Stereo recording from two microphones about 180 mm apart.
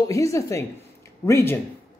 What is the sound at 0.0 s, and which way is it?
Speech, 20° left (ahead or behind).